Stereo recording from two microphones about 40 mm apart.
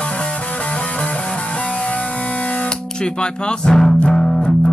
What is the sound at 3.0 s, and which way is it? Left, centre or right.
Music, centre.